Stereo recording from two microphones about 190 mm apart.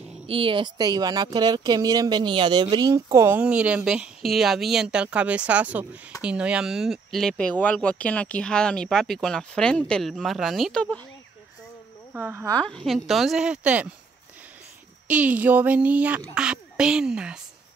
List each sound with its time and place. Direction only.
0.3 s speech: 25° right (ahead or behind); by 11.0 s 5° left (ahead or behind)
12.1 s speech: 10° right (ahead or behind)
12.4 s speech: 5° left (ahead or behind)
15.0 s speech: 5° right (ahead or behind)